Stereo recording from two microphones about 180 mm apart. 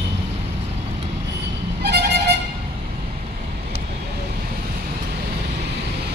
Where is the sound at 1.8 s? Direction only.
65° right (ahead or behind).